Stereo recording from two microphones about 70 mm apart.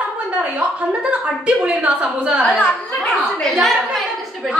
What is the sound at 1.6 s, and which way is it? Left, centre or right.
Speech, centre.